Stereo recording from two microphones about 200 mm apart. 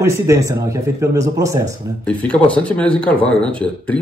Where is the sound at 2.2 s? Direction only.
5° left (ahead or behind).